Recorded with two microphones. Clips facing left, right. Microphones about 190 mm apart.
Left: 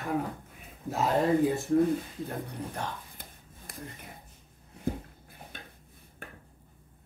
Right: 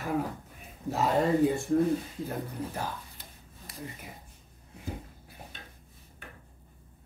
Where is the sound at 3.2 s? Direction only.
50° left (ahead or behind).